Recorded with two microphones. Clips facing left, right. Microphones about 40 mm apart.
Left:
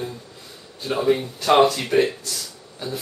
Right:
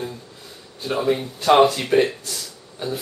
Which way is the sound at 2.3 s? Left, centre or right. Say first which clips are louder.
Even; centre.